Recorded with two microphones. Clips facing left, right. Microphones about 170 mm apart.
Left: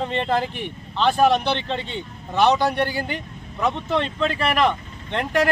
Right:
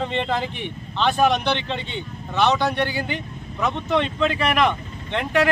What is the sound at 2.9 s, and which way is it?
Speech, 40° left (ahead or behind).